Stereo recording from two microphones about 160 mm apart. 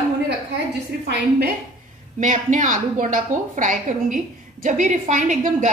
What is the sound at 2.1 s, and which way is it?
A woman's voice, 50° right (ahead or behind).